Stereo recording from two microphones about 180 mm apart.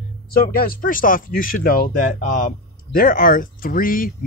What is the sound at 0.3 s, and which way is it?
Speech, 55° left (ahead or behind).